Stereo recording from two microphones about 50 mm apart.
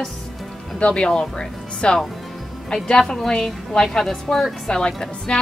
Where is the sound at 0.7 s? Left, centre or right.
Left.